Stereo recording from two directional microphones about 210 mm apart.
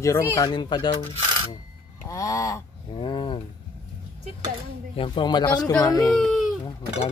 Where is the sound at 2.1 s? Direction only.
15° left (ahead or behind).